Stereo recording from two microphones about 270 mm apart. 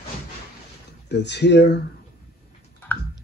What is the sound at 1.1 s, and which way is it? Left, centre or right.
Speech, left.